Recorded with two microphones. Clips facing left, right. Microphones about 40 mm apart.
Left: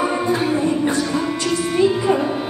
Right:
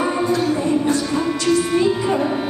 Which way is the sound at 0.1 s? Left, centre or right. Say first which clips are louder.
Even; left.